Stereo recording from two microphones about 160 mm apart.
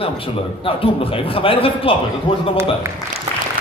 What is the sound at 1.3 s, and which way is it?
Speech, 35° left (ahead or behind).